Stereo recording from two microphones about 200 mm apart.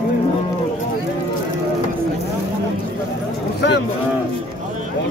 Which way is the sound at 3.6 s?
60° left (ahead or behind).